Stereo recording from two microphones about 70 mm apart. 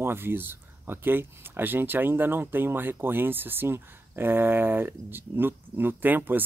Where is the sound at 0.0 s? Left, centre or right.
Right.